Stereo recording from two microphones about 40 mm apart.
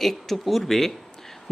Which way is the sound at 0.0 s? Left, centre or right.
Centre.